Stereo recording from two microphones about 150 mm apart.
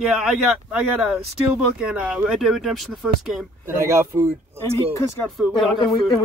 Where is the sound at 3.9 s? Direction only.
15° right (ahead or behind).